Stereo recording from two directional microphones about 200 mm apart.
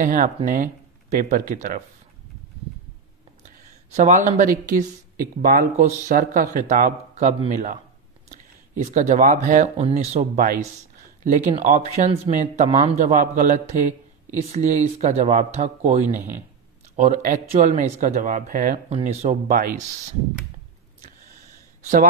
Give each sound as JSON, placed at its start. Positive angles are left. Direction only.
{"t": 0.0, "sound": "a man's voice", "side_deg": -40}
{"t": 3.4, "sound": "a man's voice", "side_deg": -35}
{"t": 18.9, "sound": "a man's voice", "side_deg": -30}